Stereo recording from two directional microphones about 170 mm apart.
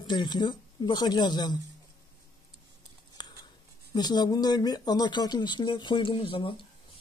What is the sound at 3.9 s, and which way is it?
Speech, 25° left (ahead or behind).